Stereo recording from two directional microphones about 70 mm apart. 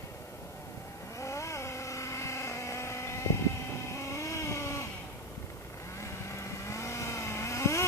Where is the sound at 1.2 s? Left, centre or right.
Left.